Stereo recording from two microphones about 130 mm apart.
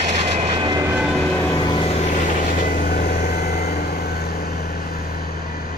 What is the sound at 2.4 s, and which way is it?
Vehicle, 90° left.